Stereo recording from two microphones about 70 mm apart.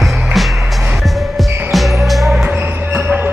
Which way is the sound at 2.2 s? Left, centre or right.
Centre.